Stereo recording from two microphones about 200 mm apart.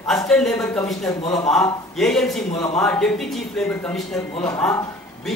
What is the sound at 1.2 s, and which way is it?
Speech, 25° left (ahead or behind).